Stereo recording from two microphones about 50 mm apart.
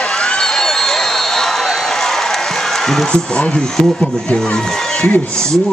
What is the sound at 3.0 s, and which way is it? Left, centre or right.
Speech, left.